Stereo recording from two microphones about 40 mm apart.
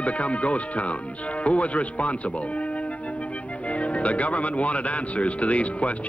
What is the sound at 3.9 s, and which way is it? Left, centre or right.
Speech, left.